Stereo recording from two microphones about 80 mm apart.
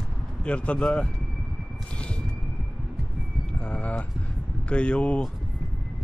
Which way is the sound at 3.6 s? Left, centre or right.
Centre.